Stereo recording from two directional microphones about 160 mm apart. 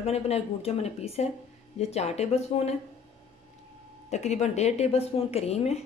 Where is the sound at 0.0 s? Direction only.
40° left (ahead or behind).